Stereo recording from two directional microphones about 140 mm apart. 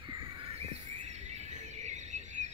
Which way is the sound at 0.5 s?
50° right (ahead or behind).